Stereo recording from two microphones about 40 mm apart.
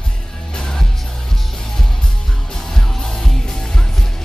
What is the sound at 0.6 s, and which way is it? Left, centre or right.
Music, centre.